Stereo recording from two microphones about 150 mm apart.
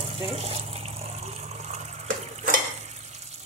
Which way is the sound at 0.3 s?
45° right (ahead or behind).